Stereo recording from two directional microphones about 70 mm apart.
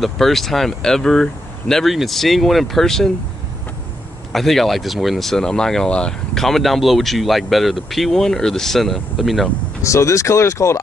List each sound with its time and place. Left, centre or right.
0.0 s speech: centre
4.3 s speech: centre
9.8 s speech: left